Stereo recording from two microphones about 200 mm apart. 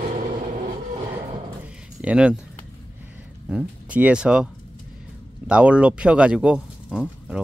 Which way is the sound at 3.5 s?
5° right (ahead or behind).